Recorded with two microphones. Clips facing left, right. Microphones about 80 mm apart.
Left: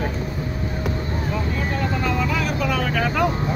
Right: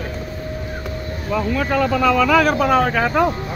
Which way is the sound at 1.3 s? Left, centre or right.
Right.